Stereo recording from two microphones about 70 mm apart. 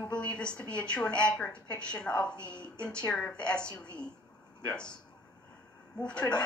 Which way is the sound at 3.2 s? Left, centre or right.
Centre.